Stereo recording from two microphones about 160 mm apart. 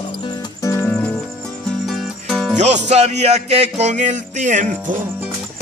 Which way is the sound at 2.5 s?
45° right (ahead or behind).